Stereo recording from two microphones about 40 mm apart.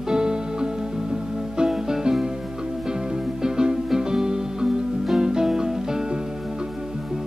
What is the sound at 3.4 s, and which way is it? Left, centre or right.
Music, centre.